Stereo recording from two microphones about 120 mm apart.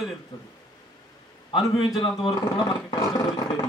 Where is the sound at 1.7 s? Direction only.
50° left (ahead or behind).